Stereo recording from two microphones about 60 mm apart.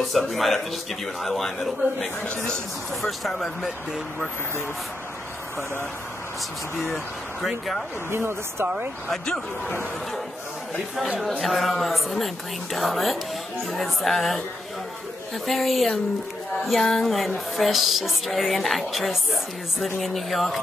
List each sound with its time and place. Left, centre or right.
0.0 s a woman's voice: centre
7.4 s a woman's voice: centre
8.1 s speech: right
9.1 s speech: centre
11.0 s a woman's voice: centre
15.4 s a woman's voice: centre